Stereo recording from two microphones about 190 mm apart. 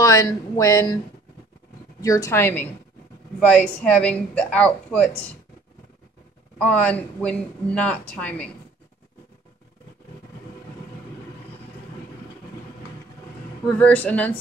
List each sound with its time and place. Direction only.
0.0 s speech: 20° left (ahead or behind)
2.0 s a woman's voice: 15° left (ahead or behind)
6.6 s speech: 5° left (ahead or behind)
13.7 s speech: 10° left (ahead or behind)